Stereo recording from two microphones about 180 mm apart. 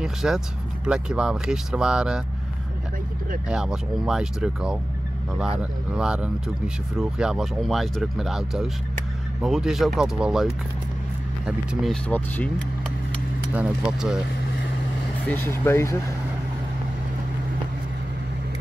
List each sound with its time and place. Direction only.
0.0 s speech: 5° right (ahead or behind)
3.4 s speech: 5° right (ahead or behind)
13.6 s speech: 5° right (ahead or behind)
15.2 s speech: 10° left (ahead or behind)